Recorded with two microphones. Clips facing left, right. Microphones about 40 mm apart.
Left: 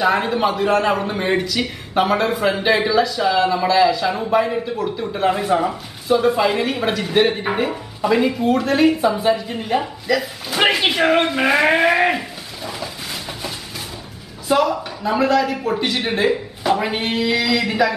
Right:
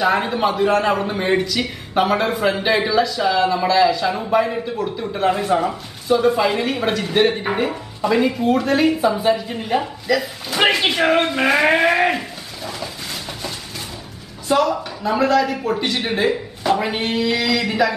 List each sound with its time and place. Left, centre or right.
0.0 s a man's voice: centre
14.5 s a man's voice: centre